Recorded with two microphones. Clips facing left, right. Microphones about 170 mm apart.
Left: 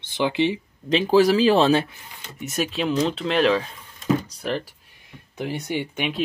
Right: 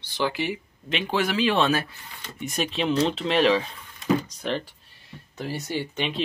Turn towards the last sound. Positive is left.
turn(degrees=10)  # may be behind; listen again after turning